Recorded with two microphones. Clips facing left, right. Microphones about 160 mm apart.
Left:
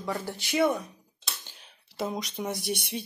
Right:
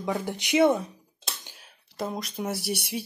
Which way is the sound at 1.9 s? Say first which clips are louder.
Even; centre (ahead or behind).